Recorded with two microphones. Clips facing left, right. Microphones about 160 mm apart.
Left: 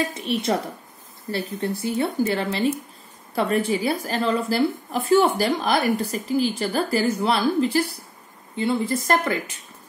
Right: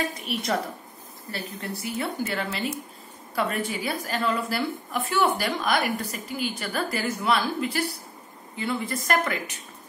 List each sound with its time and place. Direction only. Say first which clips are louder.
0.1 s speech: left 4 dB; 25° left (ahead or behind)